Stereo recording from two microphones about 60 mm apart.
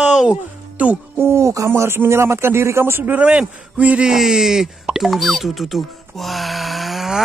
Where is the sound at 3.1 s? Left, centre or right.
Right.